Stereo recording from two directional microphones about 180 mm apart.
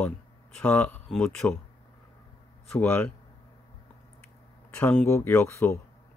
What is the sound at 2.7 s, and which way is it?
Speech, 5° left (ahead or behind).